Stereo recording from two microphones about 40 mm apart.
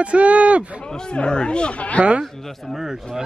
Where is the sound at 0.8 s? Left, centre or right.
Left.